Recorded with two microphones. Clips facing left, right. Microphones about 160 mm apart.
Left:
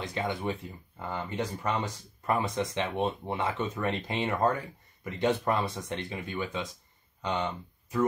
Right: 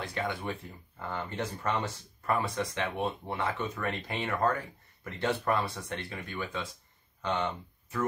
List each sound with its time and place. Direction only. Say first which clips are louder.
0.0 s speech: left 2 dB; 20° left (ahead or behind)